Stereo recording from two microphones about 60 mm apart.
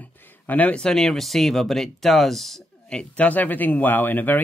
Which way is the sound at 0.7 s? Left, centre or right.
Centre.